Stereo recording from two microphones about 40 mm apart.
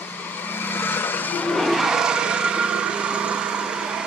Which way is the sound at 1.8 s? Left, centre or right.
Centre.